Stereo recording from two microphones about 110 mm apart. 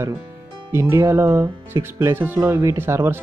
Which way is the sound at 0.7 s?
25° right (ahead or behind).